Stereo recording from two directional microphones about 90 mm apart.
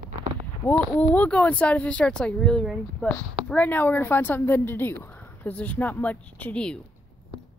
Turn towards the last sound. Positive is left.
turn(degrees=10)  # may be behind; listen again after turning